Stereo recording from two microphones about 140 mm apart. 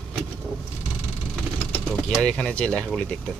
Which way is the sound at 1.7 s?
5° left (ahead or behind).